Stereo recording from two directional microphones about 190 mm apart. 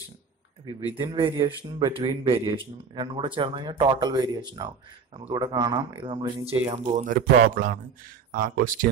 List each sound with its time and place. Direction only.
1.0 s a man's voice: 25° right (ahead or behind)
6.7 s speech: 40° right (ahead or behind)